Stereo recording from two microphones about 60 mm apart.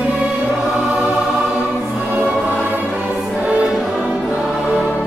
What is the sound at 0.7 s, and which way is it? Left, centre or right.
Choir, centre.